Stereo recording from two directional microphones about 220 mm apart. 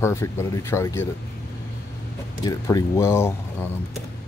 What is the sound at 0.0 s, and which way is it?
Speech, 10° left (ahead or behind).